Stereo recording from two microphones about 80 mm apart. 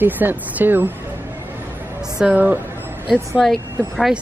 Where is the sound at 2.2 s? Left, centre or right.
Centre.